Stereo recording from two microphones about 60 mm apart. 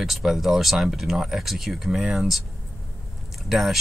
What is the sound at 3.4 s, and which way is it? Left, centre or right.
Speech, centre.